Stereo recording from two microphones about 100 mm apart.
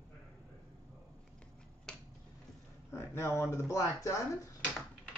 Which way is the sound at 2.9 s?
25° left (ahead or behind).